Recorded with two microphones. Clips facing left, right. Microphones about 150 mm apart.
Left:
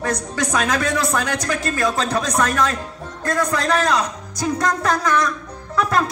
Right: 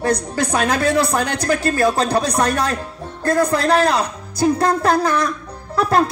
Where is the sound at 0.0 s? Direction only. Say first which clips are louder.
Right 4 dB; 30° right (ahead or behind).